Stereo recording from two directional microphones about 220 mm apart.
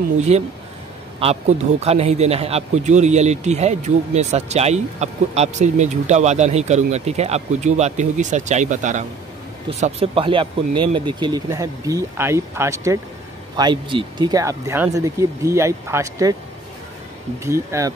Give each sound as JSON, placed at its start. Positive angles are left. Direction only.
{"t": 0.3, "sound": "speech", "side_deg": -30}
{"t": 17.4, "sound": "speech", "side_deg": -15}